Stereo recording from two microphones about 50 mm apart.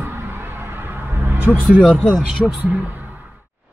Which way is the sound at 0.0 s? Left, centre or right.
Right.